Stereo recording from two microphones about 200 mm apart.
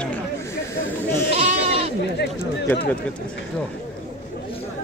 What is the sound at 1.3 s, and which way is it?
Goat, 30° right (ahead or behind).